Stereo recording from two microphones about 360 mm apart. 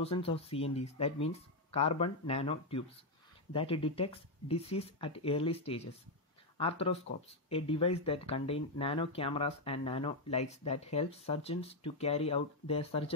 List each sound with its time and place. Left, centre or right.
0.0 s speech: centre